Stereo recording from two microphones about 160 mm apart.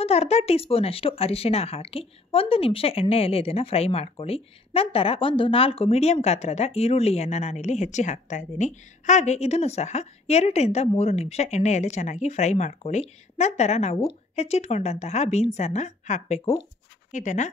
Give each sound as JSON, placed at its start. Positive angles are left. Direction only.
{"t": 0.0, "sound": "speech", "side_deg": 40}